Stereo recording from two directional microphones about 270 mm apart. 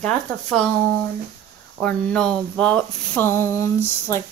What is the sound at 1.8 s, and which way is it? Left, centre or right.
Speech, centre.